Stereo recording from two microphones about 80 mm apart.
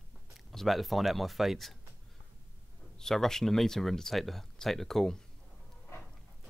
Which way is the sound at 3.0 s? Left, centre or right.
Centre.